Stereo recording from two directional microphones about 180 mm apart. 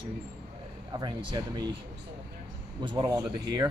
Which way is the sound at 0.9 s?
20° right (ahead or behind).